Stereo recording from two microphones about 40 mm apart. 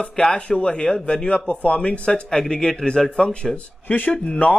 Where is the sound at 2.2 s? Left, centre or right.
Centre.